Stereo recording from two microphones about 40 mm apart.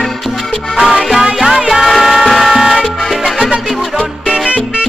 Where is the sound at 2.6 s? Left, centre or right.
Centre.